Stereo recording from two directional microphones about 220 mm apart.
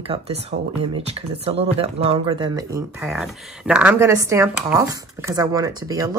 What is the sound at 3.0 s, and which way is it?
Speech, centre (ahead or behind).